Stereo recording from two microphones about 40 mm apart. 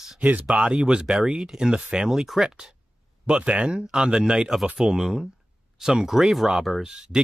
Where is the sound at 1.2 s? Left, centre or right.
Centre.